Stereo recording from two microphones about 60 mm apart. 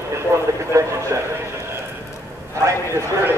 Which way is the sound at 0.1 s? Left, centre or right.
Right.